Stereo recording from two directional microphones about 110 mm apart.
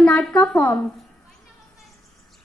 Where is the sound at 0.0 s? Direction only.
10° left (ahead or behind).